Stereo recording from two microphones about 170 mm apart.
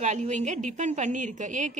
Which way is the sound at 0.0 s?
45° right (ahead or behind).